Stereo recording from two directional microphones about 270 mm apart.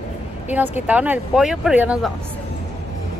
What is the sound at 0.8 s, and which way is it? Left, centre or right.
Speech, centre.